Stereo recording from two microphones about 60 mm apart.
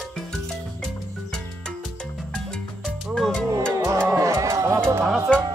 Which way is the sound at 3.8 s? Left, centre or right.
Right.